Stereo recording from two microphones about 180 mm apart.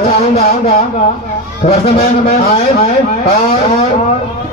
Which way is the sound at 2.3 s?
35° left (ahead or behind).